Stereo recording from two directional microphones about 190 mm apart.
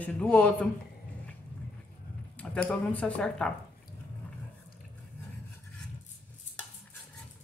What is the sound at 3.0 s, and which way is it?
Speech, 5° left (ahead or behind).